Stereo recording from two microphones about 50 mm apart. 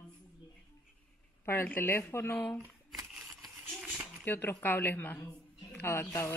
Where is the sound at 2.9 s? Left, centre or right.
Centre.